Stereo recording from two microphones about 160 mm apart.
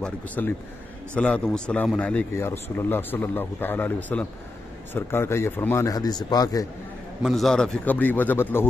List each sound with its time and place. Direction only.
0.0 s a man's voice: 10° left (ahead or behind)
7.2 s a man's voice: centre (ahead or behind)